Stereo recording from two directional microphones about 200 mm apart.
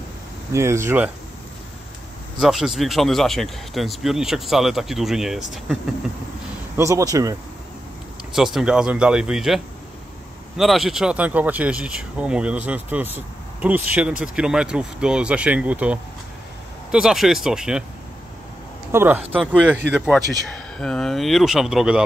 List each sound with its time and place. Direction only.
0.5 s speech: 15° right (ahead or behind)
2.4 s speech: centre (ahead or behind)
6.8 s speech: 15° right (ahead or behind)
8.4 s speech: centre (ahead or behind)
10.6 s speech: centre (ahead or behind)
18.9 s speech: 10° right (ahead or behind)